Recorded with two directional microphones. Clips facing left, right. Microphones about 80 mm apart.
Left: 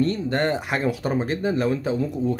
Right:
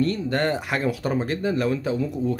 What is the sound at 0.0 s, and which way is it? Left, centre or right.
Speech, left.